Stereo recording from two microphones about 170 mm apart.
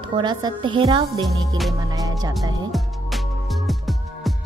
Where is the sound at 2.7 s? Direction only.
Centre (ahead or behind).